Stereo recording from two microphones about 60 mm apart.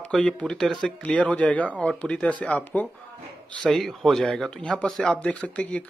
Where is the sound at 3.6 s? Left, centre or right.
Centre.